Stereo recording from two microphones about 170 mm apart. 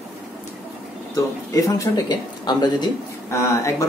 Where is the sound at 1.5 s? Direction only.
20° left (ahead or behind).